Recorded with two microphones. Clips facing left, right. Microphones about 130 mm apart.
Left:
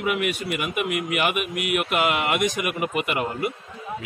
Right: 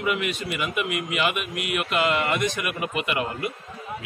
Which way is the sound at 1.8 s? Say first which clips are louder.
Right 2 dB; 10° left (ahead or behind).